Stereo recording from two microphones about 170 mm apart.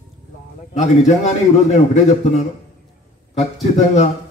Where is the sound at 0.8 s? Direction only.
40° left (ahead or behind).